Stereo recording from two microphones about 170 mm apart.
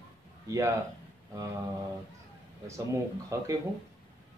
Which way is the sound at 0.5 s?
20° right (ahead or behind).